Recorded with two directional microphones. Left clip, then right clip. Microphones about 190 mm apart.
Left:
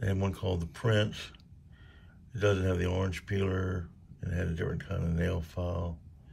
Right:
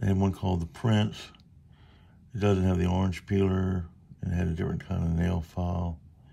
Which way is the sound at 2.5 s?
30° right (ahead or behind).